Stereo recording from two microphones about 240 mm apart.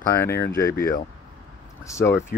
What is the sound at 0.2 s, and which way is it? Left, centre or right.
Speech, centre.